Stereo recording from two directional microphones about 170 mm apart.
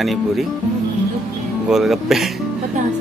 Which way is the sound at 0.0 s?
Centre (ahead or behind).